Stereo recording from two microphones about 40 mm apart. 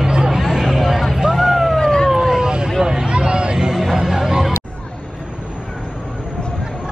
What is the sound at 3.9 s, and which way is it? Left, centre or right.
Music, centre.